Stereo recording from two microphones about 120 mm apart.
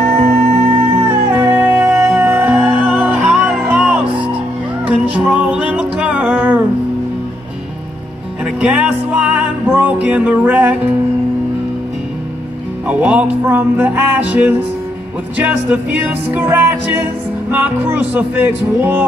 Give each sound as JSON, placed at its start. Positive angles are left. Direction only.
{"t": 0.2, "sound": "music", "side_deg": -70}
{"t": 1.0, "sound": "music", "side_deg": -15}
{"t": 8.5, "sound": "music", "side_deg": -10}
{"t": 12.8, "sound": "music", "side_deg": -10}